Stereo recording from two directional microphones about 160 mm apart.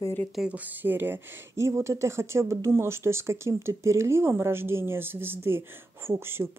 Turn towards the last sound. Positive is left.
turn(degrees=-15)  # may be behind; listen again after turning